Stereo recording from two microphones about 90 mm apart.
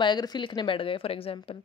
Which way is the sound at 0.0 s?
55° left (ahead or behind).